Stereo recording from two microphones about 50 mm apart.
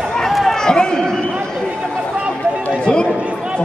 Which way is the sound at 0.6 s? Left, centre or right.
Centre.